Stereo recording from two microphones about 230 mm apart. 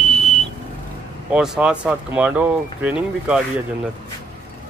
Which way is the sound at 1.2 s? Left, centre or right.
Centre.